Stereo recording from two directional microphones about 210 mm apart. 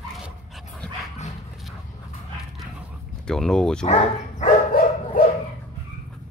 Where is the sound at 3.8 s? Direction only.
35° left (ahead or behind).